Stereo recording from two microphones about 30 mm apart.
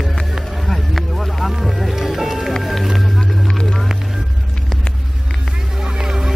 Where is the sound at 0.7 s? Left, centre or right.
Centre.